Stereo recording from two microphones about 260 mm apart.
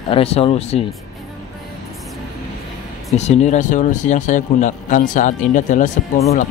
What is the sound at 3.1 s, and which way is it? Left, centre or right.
A man's voice, left.